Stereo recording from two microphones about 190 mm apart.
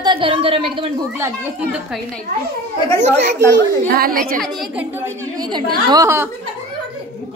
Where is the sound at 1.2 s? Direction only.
10° right (ahead or behind).